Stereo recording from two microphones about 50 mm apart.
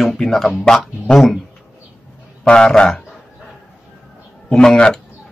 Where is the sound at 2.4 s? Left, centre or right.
Centre.